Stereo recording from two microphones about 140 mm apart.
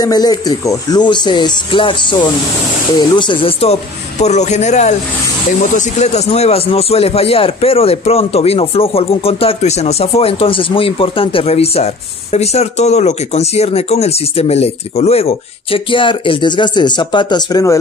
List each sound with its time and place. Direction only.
0.0 s speech: 25° left (ahead or behind)
4.2 s a man's voice: 55° left (ahead or behind); by 17.7 s 25° left (ahead or behind)